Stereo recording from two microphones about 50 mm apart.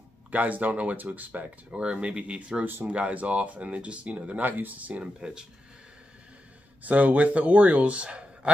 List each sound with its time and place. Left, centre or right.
0.3 s speech: right
1.7 s speech: centre
2.6 s speech: right
2.9 s speech: right
5.0 s speech: centre
6.8 s speech: right